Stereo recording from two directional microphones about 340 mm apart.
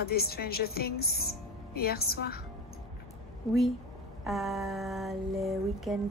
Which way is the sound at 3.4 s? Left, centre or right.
Centre.